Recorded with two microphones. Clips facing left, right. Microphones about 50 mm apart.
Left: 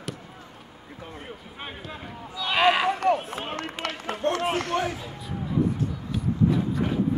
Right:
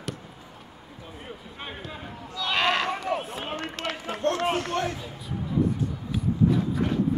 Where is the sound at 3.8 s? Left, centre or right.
Centre.